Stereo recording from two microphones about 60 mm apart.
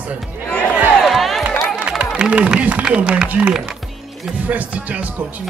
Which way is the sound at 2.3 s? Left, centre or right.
Right.